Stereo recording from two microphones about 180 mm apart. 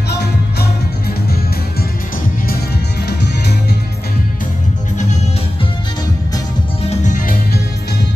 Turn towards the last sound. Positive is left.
turn(degrees=45)  # may be behind; listen again after turning